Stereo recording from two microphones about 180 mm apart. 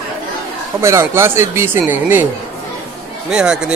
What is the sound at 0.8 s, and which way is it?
Speech, 15° right (ahead or behind).